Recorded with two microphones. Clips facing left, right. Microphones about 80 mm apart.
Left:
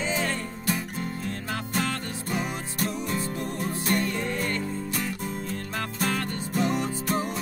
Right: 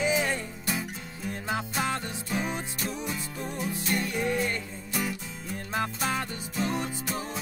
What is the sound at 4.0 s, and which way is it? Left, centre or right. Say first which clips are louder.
Music: even; centre.